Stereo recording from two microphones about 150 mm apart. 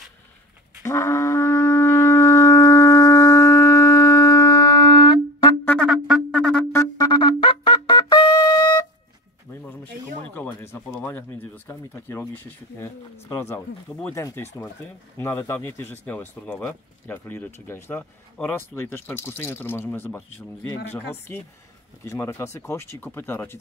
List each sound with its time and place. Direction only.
0.8 s shofar: 20° left (ahead or behind)
5.9 s music: centre (ahead or behind)
6.7 s music: 20° left (ahead or behind)
10.2 s speech: 10° left (ahead or behind)